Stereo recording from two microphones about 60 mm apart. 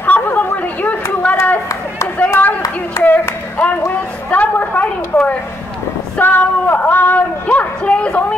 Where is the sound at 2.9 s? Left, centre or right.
Left.